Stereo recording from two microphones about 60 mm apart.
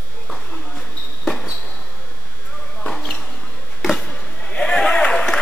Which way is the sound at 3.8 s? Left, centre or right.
Centre.